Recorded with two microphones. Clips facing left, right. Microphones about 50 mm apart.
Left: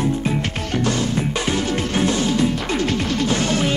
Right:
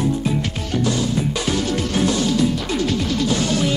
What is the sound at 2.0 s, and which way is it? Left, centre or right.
Music, left.